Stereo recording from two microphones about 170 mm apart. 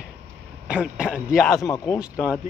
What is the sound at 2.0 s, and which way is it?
Speech, 5° right (ahead or behind).